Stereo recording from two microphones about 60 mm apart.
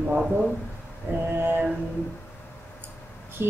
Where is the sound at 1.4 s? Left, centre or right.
Right.